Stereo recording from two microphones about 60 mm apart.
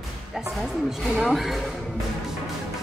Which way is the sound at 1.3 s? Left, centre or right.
Centre.